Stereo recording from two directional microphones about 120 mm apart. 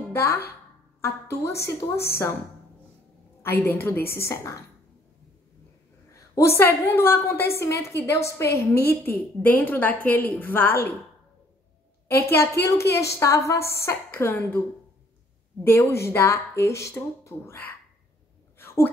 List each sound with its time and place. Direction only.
0.1 s a woman's voice: 20° left (ahead or behind)
3.4 s a woman's voice: 20° left (ahead or behind)
6.1 s a woman's voice: 25° left (ahead or behind)
12.1 s a woman's voice: 20° left (ahead or behind)
15.6 s a woman's voice: 20° left (ahead or behind)